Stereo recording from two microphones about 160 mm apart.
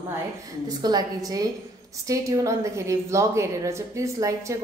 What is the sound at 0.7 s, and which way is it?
A woman's voice, 25° right (ahead or behind).